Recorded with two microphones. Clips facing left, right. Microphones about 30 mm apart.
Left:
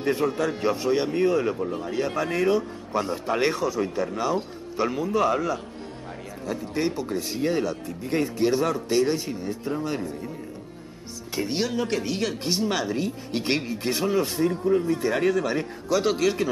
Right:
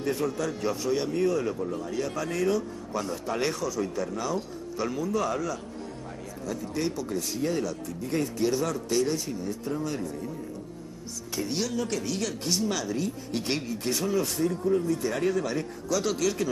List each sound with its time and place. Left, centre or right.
0.0 s a man's voice: left
11.3 s speech: left